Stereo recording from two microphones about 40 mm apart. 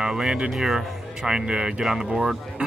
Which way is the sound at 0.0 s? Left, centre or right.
Centre.